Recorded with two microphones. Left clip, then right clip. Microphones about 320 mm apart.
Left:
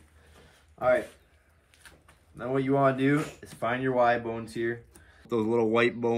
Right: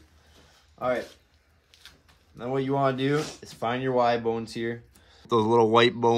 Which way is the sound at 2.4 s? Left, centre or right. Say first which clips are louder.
Even; centre.